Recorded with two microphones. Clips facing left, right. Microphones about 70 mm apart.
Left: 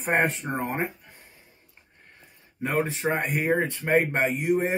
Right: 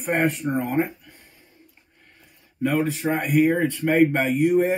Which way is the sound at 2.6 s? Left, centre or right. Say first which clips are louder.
Right 3 dB; left.